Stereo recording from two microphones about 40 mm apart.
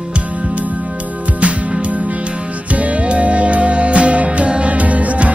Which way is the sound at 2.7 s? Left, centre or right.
Right.